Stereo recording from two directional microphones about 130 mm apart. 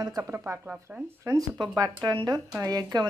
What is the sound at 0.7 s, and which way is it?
Speech, 10° right (ahead or behind).